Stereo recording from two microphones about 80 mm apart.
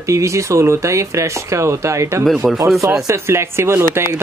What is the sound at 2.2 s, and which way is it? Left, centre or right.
Speech, centre.